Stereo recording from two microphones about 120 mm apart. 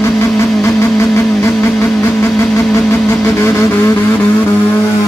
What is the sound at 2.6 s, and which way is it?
Vehicle, 25° left (ahead or behind).